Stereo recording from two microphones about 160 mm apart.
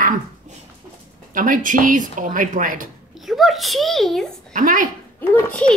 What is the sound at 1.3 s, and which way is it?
Mantra, 55° right (ahead or behind).